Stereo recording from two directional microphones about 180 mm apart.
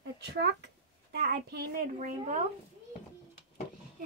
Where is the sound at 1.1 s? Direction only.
65° right (ahead or behind).